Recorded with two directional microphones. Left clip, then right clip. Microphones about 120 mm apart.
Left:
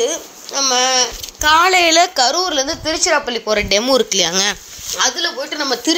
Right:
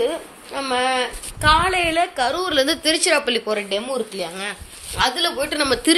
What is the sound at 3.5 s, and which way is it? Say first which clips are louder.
Speech: left 8 dB; 45° left (ahead or behind).